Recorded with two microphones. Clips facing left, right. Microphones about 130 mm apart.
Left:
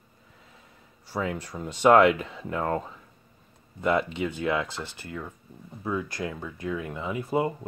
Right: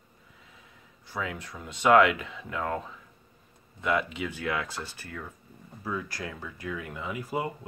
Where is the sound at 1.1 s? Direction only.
35° left (ahead or behind).